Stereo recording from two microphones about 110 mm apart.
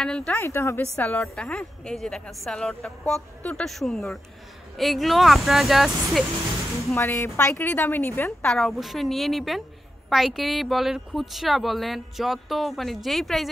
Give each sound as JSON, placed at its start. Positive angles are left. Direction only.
{"t": 0.0, "sound": "a woman's voice", "side_deg": 5}
{"t": 0.4, "sound": "a woman's voice", "side_deg": 25}
{"t": 7.0, "sound": "a woman's voice", "side_deg": 20}
{"t": 8.5, "sound": "a woman's voice", "side_deg": 0}